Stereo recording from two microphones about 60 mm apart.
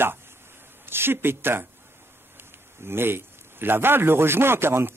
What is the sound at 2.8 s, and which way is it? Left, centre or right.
A man's voice, right.